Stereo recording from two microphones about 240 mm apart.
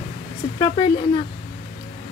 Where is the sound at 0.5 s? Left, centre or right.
Left.